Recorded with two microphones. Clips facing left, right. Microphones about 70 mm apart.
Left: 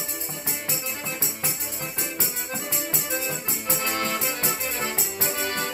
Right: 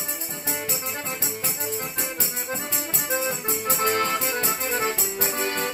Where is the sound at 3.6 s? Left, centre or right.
Right.